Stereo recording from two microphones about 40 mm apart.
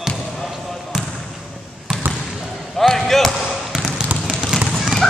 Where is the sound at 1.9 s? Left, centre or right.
Left.